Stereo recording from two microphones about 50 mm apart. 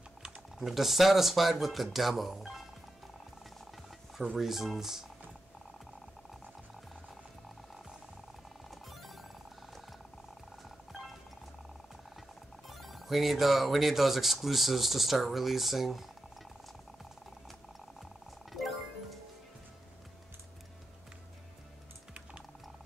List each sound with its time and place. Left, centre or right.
0.2 s speech: centre
4.4 s speech: centre
8.6 s music: centre
12.6 s speech: centre
18.5 s music: centre